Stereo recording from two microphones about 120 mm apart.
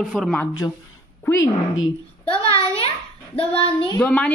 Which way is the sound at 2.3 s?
50° left (ahead or behind).